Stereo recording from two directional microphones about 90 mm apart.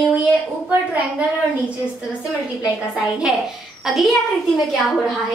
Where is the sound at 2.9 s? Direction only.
10° right (ahead or behind).